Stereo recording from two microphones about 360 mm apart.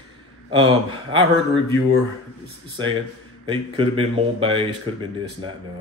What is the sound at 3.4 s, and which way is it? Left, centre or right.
Speech, centre.